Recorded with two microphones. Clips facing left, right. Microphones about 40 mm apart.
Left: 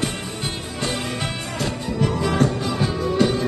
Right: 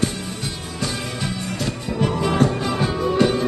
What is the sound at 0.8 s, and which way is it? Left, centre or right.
Music, left.